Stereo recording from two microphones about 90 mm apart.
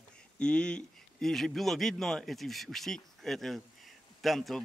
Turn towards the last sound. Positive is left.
turn(degrees=0)  # may be behind; listen again after turning